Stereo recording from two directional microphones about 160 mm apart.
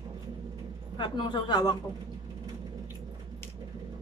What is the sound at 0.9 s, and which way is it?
Speech, 30° left (ahead or behind).